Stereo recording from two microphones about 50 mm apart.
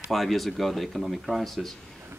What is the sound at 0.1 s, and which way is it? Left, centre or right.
Speech, centre.